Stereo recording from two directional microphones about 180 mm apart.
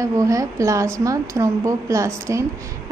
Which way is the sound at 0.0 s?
15° right (ahead or behind).